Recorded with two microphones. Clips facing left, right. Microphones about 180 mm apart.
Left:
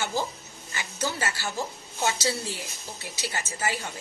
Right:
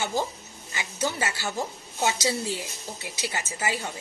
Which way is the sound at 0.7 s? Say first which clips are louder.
Right 2 dB; 15° right (ahead or behind).